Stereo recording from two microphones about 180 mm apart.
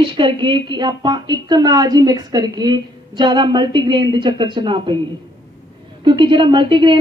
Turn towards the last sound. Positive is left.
turn(degrees=-25)  # may be behind; listen again after turning